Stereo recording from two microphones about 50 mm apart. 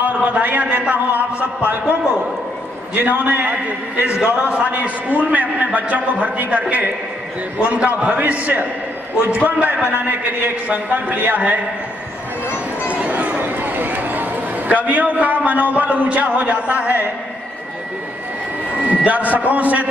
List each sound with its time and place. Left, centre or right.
0.0 s a man's voice: right
3.0 s a man's voice: right
12.9 s a sound: right
18.8 s a man's voice: right